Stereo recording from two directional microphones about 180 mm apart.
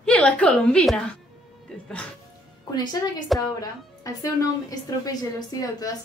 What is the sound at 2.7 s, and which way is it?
A woman's voice, 25° left (ahead or behind).